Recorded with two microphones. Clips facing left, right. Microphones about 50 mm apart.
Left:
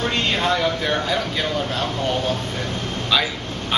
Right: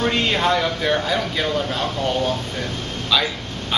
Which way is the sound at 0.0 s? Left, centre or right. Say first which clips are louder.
Right 2 dB; centre.